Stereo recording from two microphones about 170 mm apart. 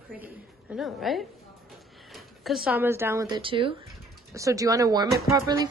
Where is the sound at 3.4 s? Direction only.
30° right (ahead or behind).